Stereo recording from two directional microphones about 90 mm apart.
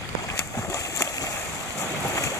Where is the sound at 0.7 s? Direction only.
35° left (ahead or behind).